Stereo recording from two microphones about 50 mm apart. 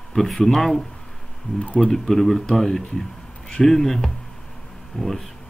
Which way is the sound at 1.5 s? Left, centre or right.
Left.